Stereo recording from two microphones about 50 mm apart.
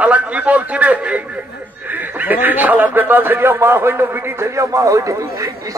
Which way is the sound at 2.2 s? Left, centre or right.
Right.